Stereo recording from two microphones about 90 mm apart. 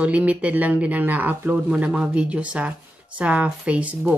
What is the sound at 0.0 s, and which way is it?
Speech, 15° right (ahead or behind).